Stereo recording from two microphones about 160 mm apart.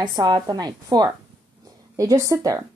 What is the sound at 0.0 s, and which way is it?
A woman's voice, 25° right (ahead or behind).